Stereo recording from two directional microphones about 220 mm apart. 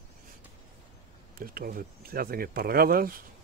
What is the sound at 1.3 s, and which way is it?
Speech, 40° right (ahead or behind).